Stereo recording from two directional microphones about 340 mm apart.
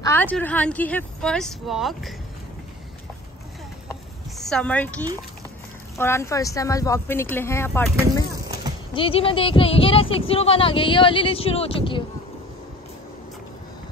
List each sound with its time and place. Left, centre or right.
0.0 s speech: centre
4.4 s a woman's voice: centre
8.9 s speech: centre